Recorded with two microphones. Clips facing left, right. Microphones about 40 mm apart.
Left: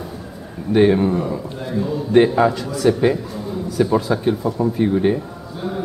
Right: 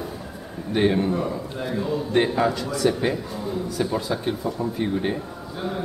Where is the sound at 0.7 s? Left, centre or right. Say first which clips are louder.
Left 6 dB; centre.